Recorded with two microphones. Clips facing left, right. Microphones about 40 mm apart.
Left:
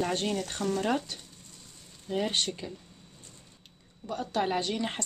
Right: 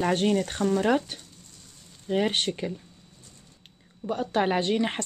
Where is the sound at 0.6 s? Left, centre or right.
Centre.